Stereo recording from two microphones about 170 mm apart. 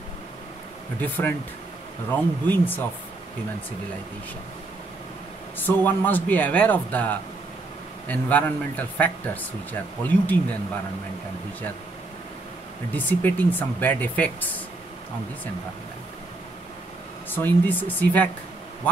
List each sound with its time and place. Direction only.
1.0 s speech: 10° left (ahead or behind)
5.6 s speech: 10° left (ahead or behind)
12.9 s speech: 10° left (ahead or behind)
17.3 s speech: 10° left (ahead or behind)